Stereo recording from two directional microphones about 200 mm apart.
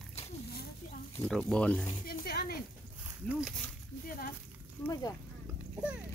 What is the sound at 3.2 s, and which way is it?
Speech, 5° right (ahead or behind).